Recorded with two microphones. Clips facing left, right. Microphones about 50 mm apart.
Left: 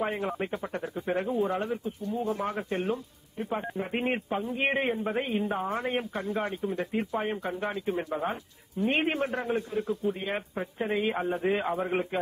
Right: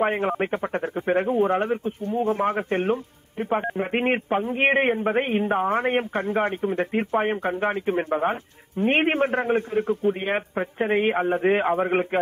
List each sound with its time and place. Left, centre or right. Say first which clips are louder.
0.0 s speech: right 7 dB; right